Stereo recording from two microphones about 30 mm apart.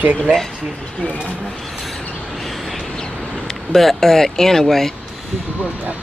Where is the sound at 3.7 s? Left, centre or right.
Centre.